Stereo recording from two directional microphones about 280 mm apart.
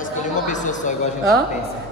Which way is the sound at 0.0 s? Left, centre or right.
Left.